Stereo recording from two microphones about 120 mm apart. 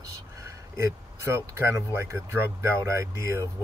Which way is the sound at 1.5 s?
25° right (ahead or behind).